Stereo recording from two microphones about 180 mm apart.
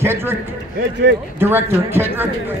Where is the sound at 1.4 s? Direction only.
10° right (ahead or behind).